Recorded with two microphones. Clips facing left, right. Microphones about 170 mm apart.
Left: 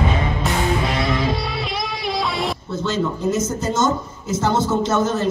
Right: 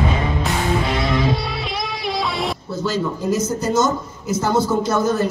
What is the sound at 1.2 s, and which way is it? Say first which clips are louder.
Music: right 1 dB; centre (ahead or behind).